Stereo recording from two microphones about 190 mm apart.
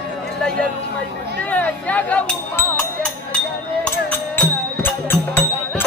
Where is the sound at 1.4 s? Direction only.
10° left (ahead or behind).